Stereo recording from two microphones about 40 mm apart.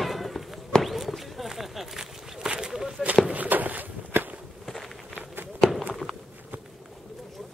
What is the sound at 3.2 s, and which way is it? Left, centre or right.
Walk, right.